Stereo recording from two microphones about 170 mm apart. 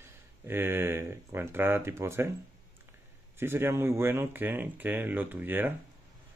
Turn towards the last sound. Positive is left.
turn(degrees=-10)  # may be behind; listen again after turning